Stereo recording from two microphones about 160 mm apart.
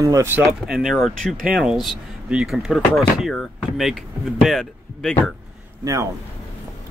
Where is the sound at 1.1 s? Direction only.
60° right (ahead or behind).